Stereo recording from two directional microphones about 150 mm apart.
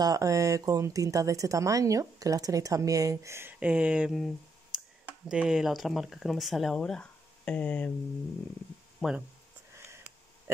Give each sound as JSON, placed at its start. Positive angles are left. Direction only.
{"t": 0.0, "sound": "speech", "side_deg": -25}
{"t": 9.0, "sound": "speech", "side_deg": 0}